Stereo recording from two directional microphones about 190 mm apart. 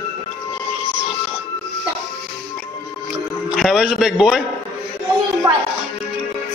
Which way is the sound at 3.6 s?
Centre (ahead or behind).